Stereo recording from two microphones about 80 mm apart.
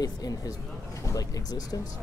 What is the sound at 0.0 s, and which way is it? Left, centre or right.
Speech, left.